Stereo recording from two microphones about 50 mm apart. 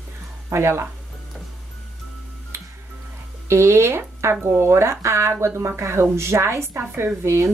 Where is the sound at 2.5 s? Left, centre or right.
Right.